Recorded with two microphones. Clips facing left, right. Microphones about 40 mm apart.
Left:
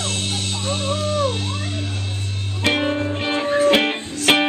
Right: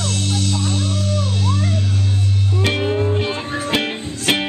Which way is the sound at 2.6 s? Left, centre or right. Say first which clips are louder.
Left 1 dB; centre.